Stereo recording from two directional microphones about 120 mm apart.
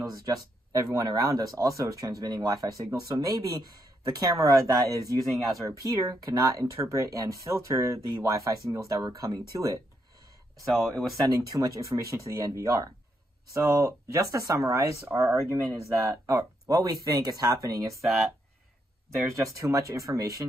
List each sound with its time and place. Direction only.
0.0 s speech: 30° right (ahead or behind)
10.7 s speech: centre (ahead or behind)
11.2 s speech: 30° right (ahead or behind)
19.2 s speech: 25° right (ahead or behind)